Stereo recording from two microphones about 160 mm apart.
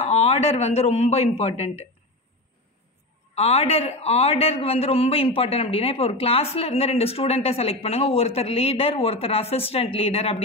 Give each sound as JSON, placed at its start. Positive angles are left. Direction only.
{"t": 0.0, "sound": "a man's voice", "side_deg": 40}
{"t": 3.3, "sound": "a man's voice", "side_deg": 40}